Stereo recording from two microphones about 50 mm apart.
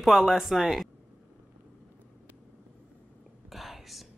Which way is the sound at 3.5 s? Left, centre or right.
Centre.